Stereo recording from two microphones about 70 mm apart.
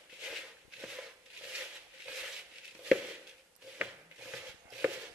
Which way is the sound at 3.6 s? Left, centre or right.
Right.